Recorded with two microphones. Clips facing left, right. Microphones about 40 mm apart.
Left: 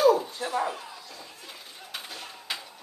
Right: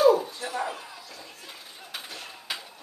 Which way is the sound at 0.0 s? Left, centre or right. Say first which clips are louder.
Right 1 dB; centre.